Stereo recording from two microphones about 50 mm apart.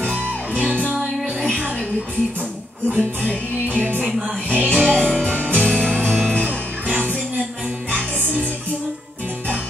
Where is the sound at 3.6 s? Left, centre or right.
Right.